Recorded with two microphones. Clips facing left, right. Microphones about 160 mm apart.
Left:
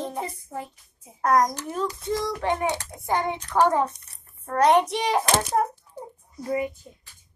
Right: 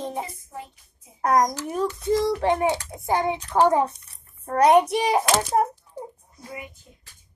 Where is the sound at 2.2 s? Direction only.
20° right (ahead or behind).